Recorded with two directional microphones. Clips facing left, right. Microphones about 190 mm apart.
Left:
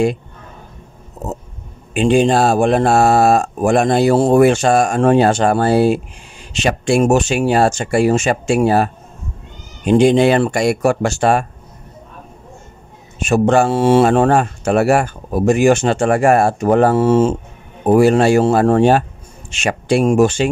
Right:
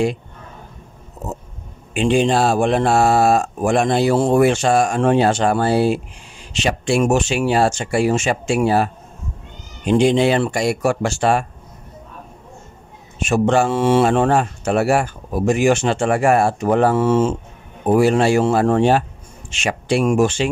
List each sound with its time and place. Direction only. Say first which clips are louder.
2.0 s speech: left 3 dB; 45° left (ahead or behind)
13.3 s speech: left 3 dB; 45° left (ahead or behind)